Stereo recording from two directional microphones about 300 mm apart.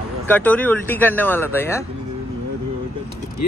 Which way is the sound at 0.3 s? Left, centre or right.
Centre.